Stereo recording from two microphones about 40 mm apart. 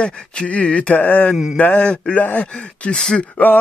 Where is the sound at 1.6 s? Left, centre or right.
Left.